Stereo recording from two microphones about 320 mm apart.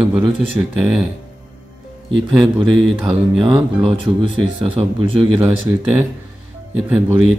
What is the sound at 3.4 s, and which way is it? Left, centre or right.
Speech, centre.